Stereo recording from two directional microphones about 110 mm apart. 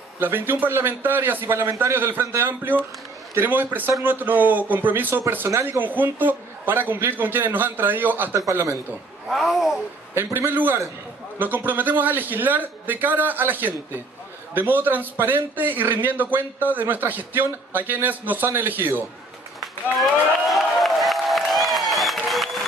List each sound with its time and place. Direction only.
0.2 s a man's voice: 20° right (ahead or behind)
9.3 s a sound: centre (ahead or behind)
10.1 s a man's voice: 20° right (ahead or behind)
19.6 s applause: centre (ahead or behind)